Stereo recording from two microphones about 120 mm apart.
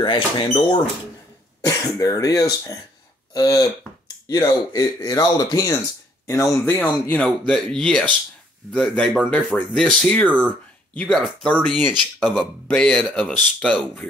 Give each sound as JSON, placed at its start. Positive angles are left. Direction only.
{"t": 0.0, "sound": "speech", "side_deg": 45}
{"t": 1.6, "sound": "speech", "side_deg": 30}
{"t": 6.5, "sound": "speech", "side_deg": 20}